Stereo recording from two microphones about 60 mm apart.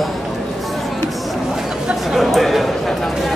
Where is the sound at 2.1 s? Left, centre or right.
Centre.